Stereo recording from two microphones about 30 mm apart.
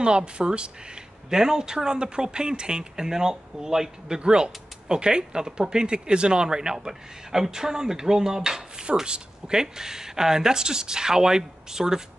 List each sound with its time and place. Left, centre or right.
0.0 s speech: right
1.3 s speech: centre
3.1 s speech: centre